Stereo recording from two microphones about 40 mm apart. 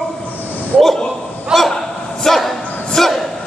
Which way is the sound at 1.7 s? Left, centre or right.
Centre.